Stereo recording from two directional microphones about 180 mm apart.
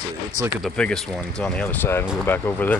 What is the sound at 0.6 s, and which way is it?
Speech, 5° left (ahead or behind).